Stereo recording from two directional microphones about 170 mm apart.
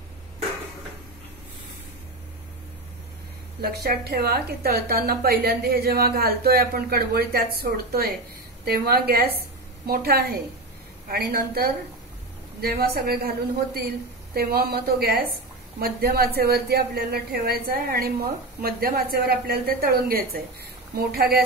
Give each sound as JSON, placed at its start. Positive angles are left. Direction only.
{"t": 3.6, "sound": "a woman's voice", "side_deg": -70}